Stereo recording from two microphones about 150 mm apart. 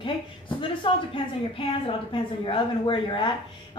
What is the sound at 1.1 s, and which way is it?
Speech, 35° left (ahead or behind).